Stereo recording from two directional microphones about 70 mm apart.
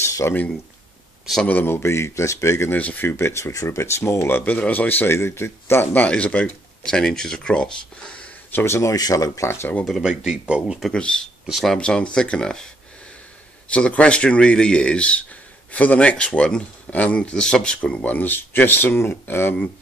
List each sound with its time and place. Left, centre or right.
0.0 s a sound: left
1.6 s speech: left
2.7 s speech: left
6.0 s speech: centre
8.5 s speech: left
8.9 s speech: left
9.5 s speech: left
10.0 s speech: centre
10.9 s speech: centre
13.7 s speech: centre
16.9 s speech: left